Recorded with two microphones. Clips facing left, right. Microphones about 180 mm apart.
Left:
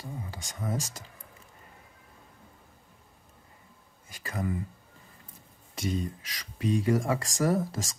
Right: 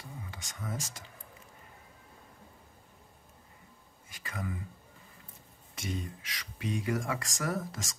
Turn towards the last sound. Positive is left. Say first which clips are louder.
# left 8 dB
turn(degrees=30)  # may be behind; listen again after turning